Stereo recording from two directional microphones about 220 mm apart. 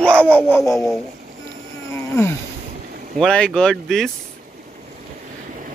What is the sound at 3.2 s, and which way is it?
Speech, 5° left (ahead or behind).